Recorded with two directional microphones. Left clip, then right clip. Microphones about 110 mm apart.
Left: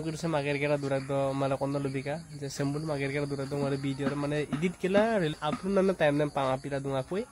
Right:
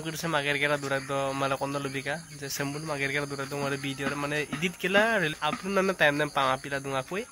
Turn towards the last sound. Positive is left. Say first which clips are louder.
# right 1 dB
turn(degrees=15)  # may be behind; listen again after turning